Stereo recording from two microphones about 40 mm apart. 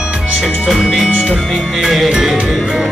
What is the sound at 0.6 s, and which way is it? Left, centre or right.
Music, centre.